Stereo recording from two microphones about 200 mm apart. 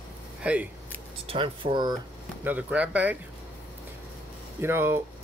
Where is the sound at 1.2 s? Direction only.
25° right (ahead or behind).